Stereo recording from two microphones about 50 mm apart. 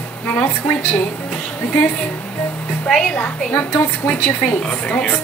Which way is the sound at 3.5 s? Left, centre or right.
Left.